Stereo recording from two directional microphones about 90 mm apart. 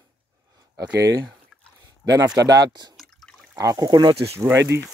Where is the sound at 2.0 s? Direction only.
40° right (ahead or behind).